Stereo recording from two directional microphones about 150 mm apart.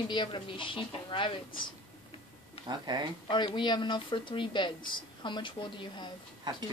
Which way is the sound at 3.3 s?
30° left (ahead or behind).